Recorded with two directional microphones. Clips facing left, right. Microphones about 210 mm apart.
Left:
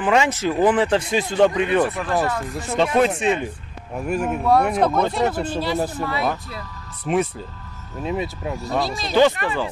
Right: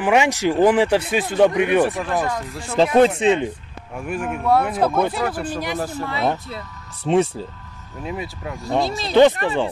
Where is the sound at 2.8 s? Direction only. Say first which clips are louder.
Right 4 dB; 25° right (ahead or behind).